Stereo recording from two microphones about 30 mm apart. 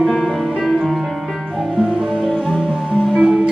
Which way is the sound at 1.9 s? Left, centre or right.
Right.